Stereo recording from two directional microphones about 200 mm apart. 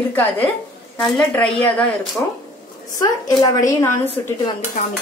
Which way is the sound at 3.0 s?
15° left (ahead or behind).